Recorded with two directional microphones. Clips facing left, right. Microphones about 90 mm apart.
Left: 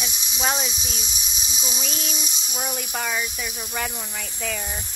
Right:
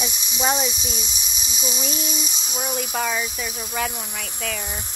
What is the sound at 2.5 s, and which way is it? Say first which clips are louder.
Speech: right 2 dB; 25° right (ahead or behind).